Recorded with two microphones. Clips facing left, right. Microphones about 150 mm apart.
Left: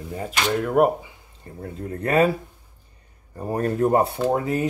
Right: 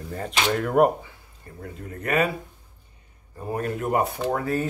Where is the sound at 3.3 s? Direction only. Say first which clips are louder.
Left 4 dB; 35° left (ahead or behind); by 4.6 s 20° left (ahead or behind).